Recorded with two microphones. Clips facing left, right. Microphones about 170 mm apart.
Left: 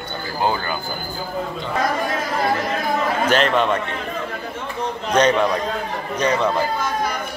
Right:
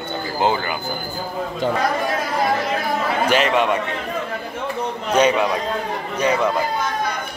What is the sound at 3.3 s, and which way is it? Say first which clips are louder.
Speech: even; 10° right (ahead or behind).